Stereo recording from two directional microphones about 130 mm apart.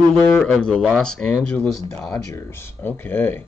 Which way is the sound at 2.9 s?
15° left (ahead or behind).